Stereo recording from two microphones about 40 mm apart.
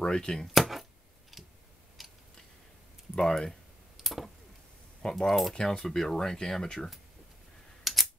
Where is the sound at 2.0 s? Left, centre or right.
Centre.